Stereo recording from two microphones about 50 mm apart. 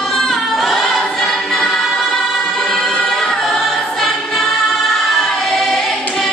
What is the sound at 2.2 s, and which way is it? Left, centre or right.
Music, centre.